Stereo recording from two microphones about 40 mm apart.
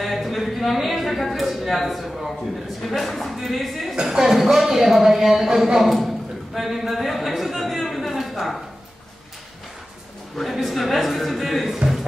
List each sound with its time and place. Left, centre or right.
0.0 s a sound: centre
2.8 s a woman's voice: centre
3.9 s speech: centre
10.6 s speech: centre